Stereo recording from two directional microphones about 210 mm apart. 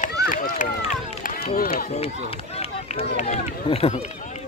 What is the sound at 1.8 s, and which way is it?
Run, 30° left (ahead or behind).